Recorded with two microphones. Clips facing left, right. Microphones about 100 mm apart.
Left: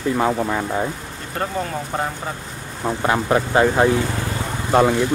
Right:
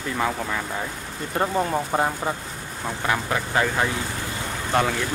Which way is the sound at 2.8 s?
25° left (ahead or behind).